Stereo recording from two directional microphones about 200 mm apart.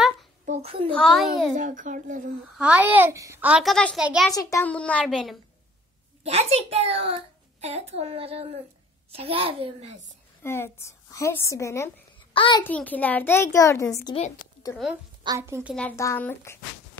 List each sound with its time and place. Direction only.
0.5 s a child's voice: 30° right (ahead or behind)
0.9 s a child's voice: centre (ahead or behind)
1.6 s a child's voice: 40° right (ahead or behind)
2.5 s a child's voice: 5° right (ahead or behind)
4.3 s a woman's voice: 15° left (ahead or behind); by 5.4 s centre (ahead or behind)
6.2 s a child's voice: 30° right (ahead or behind)
10.4 s a woman's voice: 10° left (ahead or behind)
12.6 s a woman's voice: 10° left (ahead or behind)
15.2 s a child's voice: 15° right (ahead or behind)
16.0 s a woman's voice: 10° left (ahead or behind)